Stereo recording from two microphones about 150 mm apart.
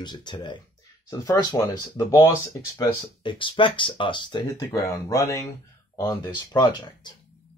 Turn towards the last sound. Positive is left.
turn(degrees=30)  # may be behind; listen again after turning